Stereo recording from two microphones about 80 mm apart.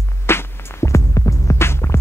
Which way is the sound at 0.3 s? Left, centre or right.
Left.